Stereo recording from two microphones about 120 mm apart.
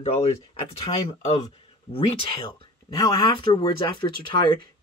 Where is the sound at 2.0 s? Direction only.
45° left (ahead or behind).